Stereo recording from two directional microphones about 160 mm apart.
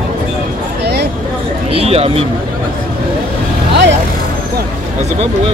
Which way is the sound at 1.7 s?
40° right (ahead or behind).